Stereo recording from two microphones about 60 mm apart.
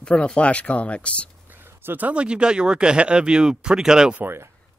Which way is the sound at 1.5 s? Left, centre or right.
Right.